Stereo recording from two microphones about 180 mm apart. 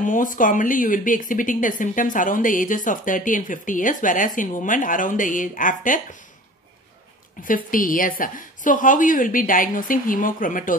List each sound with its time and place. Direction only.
0.0 s a woman's voice: 45° left (ahead or behind)
7.4 s a woman's voice: 50° left (ahead or behind)